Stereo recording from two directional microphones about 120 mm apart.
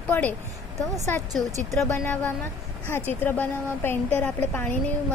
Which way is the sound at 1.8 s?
20° left (ahead or behind).